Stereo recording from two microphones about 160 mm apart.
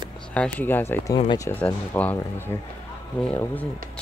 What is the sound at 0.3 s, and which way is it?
Speech, 10° left (ahead or behind).